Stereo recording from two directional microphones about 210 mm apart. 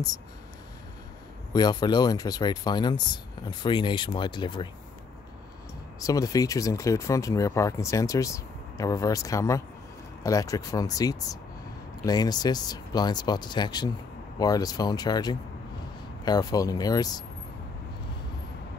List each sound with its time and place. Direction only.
1.5 s speech: 20° left (ahead or behind)
5.9 s speech: 15° left (ahead or behind)